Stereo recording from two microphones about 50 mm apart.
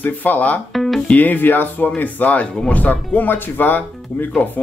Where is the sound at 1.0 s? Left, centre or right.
Left.